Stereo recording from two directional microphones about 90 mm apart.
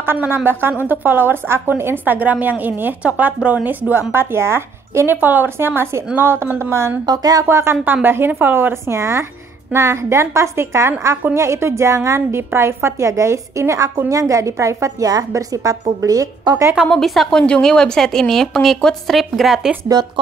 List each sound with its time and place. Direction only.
0.0 s a woman's voice: 25° right (ahead or behind)
7.1 s speech: 45° right (ahead or behind)
7.4 s a woman's voice: 30° right (ahead or behind)
16.8 s a woman's voice: 5° left (ahead or behind)
19.9 s speech: 50° right (ahead or behind)